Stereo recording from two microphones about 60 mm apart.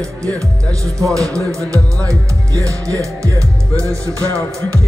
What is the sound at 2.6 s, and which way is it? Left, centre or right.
Music, right.